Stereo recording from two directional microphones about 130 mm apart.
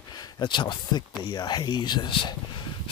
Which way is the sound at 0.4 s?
35° left (ahead or behind).